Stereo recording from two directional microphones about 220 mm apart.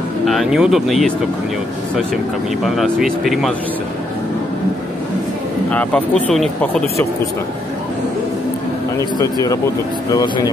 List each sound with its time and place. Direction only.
0.2 s speech: centre (ahead or behind)
2.6 s speech: centre (ahead or behind)
5.7 s speech: 5° left (ahead or behind)
8.9 s speech: 15° left (ahead or behind)